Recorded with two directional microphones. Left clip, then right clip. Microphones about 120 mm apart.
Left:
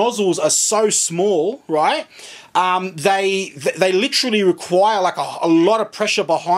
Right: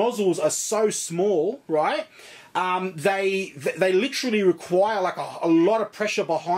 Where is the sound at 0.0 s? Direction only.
30° left (ahead or behind).